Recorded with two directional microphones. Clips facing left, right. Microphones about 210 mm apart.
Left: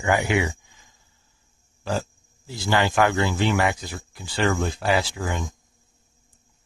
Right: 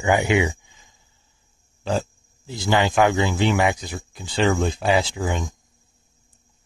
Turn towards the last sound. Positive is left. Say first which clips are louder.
# right 3 dB
turn(degrees=-20)  # may be behind; listen again after turning